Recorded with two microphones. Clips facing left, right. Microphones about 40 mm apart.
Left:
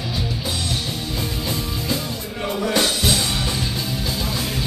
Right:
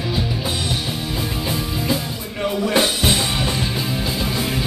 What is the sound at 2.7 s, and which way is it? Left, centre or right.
Music, right.